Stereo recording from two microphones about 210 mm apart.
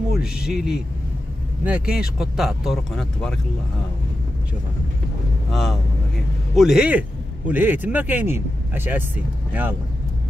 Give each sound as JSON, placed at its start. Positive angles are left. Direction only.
{"t": 0.1, "sound": "speech", "side_deg": -5}
{"t": 5.5, "sound": "a man's voice", "side_deg": 0}